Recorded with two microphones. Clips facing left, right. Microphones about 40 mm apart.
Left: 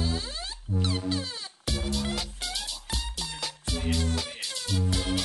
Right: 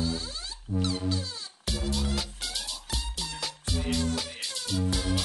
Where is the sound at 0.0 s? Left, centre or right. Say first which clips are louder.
Even; left.